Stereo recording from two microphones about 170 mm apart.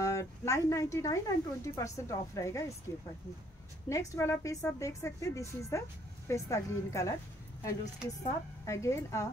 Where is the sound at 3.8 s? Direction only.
15° left (ahead or behind).